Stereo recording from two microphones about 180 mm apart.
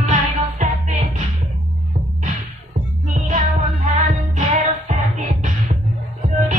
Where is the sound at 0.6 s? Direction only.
45° right (ahead or behind).